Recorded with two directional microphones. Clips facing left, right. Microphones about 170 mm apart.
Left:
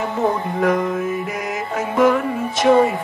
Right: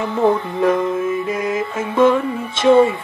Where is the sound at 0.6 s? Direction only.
25° right (ahead or behind).